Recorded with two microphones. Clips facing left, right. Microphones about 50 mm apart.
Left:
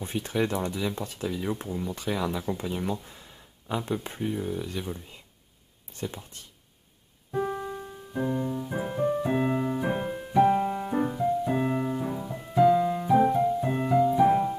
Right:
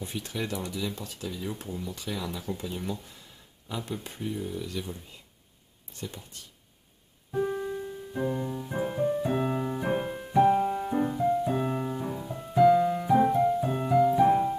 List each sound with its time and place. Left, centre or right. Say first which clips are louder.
0.0 s speech: left 6 dB; left
5.9 s speech: left 4 dB; left
7.3 s piano: even; centre
8.1 s piano: left 3 dB; centre
9.1 s keyboard: left 2 dB; centre
12.7 s music: even; centre